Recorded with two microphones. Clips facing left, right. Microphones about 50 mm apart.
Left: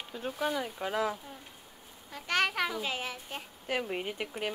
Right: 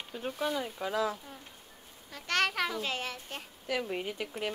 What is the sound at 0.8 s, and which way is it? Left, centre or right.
Speech, left.